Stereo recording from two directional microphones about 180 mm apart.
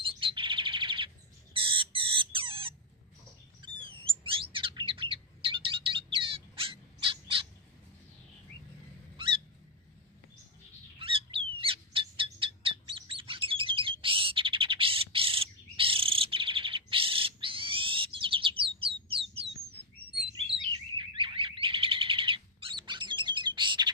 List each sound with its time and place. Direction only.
0.0 s bird: 30° right (ahead or behind)
3.8 s chirp: 30° right (ahead or behind)
9.1 s a sound: 30° right (ahead or behind)
11.0 s bird: 30° right (ahead or behind)
19.7 s chirp: 30° right (ahead or behind)
21.0 s bird: 30° right (ahead or behind)